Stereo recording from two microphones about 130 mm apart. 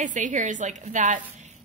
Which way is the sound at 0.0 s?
75° right (ahead or behind).